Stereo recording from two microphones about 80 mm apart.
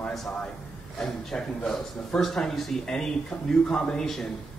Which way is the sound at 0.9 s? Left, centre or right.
Centre.